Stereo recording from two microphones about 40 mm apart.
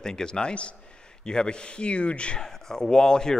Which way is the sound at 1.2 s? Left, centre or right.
Centre.